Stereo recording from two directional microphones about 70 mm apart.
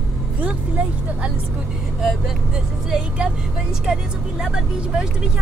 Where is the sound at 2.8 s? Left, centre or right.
Centre.